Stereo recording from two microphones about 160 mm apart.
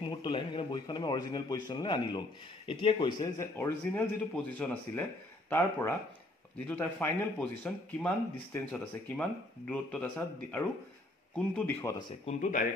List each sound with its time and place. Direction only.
0.0 s a man's voice: 30° left (ahead or behind)
3.5 s speech: 15° left (ahead or behind)
12.3 s speech: 55° left (ahead or behind)